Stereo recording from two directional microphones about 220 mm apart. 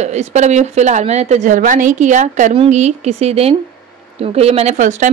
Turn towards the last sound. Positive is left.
turn(degrees=-35)  # may be behind; listen again after turning